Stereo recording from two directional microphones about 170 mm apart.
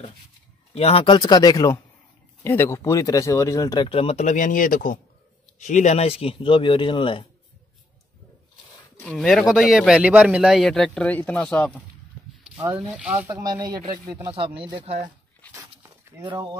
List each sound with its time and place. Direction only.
0.7 s speech: 35° left (ahead or behind)
3.9 s speech: 35° left (ahead or behind)
9.0 s speech: centre (ahead or behind)
12.7 s speech: 10° right (ahead or behind)
13.3 s speech: 25° right (ahead or behind)
15.8 s a sound: 20° right (ahead or behind)